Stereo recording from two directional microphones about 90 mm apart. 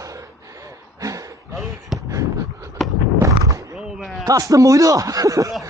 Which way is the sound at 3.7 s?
5° right (ahead or behind).